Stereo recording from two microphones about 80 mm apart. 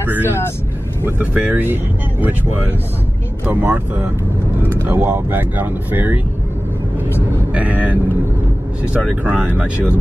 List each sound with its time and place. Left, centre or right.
0.0 s speech: right
7.5 s speech: centre